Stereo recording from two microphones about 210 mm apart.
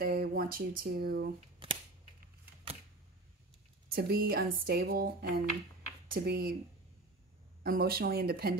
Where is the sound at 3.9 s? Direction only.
45° right (ahead or behind).